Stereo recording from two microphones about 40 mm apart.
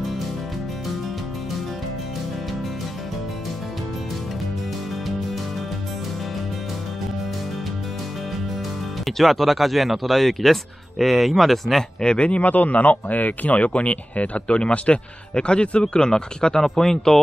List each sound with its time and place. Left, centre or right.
9.0 s speech: centre
12.0 s speech: left
12.4 s speech: left; by 17.2 s centre